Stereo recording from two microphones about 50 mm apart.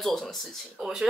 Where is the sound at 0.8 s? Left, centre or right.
Centre.